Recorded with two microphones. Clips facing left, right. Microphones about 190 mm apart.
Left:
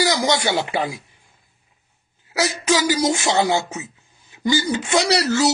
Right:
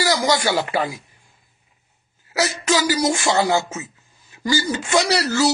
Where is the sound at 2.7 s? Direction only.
20° left (ahead or behind).